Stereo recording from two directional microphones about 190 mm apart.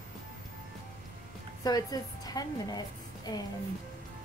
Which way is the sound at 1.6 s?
20° left (ahead or behind).